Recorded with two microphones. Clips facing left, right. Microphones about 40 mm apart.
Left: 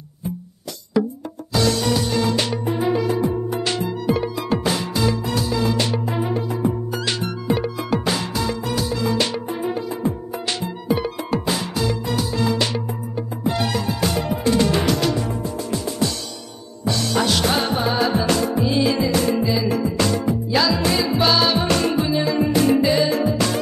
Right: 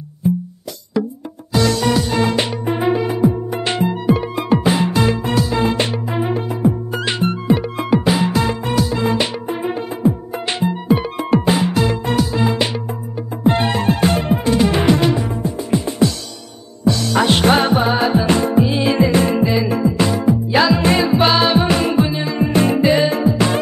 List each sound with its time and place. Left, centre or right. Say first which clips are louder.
1.6 s music: right 3 dB; right
4.9 s music: right 5 dB; right
7.9 s music: right 8 dB; centre
8.3 s music: right 5 dB; right
11.7 s music: right 5 dB; right
12.4 s music: right 3 dB; right
14.4 s music: right 1 dB; right
17.1 s music: right 6 dB; right
20.4 s music: right 5 dB; right
23.2 s music: right 4 dB; right